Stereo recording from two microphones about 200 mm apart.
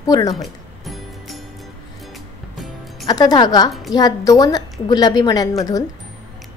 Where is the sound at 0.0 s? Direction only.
20° left (ahead or behind).